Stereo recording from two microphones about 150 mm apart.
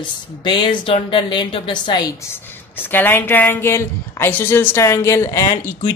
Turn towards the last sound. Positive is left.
turn(degrees=20)  # may be behind; listen again after turning